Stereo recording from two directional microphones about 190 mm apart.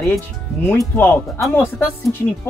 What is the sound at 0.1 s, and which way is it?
Speech, 10° left (ahead or behind).